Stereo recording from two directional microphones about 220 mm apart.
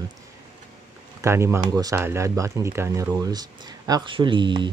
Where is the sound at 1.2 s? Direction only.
10° right (ahead or behind).